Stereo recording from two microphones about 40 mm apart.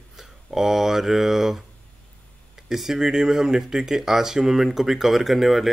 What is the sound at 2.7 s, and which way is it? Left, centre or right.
Speech, centre.